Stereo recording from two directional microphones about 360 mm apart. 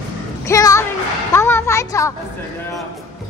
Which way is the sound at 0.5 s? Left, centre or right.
Centre.